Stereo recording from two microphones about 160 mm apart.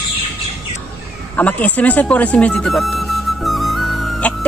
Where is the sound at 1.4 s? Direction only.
10° left (ahead or behind).